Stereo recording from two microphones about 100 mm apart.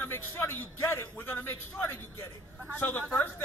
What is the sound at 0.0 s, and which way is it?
A man's voice, 25° left (ahead or behind).